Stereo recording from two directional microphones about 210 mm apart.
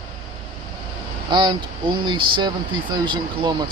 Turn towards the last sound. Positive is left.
turn(degrees=-20)  # may be behind; listen again after turning